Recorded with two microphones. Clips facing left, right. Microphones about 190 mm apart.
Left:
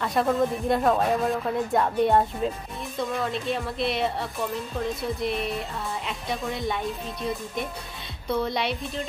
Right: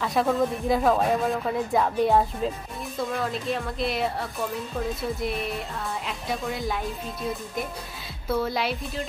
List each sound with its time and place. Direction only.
0.0 s speech: centre (ahead or behind)